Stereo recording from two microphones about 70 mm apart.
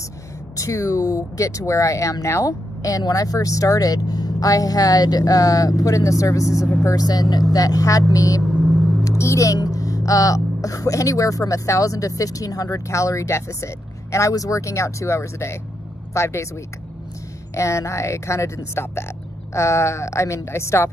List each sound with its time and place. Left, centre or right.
0.6 s speech: left
7.1 s speech: left
7.5 s speech: left
8.5 s vehicle: centre
9.0 s speech: left
17.6 s speech: left